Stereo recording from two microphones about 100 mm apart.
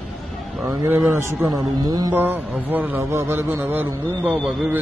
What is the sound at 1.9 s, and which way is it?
Speech, 40° right (ahead or behind).